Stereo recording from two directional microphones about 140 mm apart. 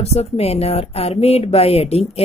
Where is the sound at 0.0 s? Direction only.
50° left (ahead or behind).